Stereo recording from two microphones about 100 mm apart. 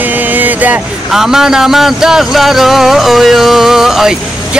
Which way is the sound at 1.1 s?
5° right (ahead or behind).